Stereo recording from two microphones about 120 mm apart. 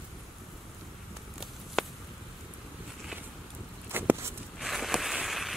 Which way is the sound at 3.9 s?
15° right (ahead or behind).